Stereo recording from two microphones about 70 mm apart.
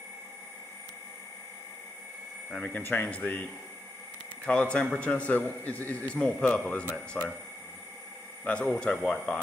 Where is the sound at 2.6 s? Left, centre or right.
Left.